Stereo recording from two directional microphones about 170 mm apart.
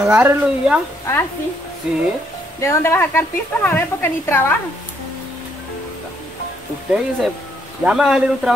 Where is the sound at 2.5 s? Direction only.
15° left (ahead or behind).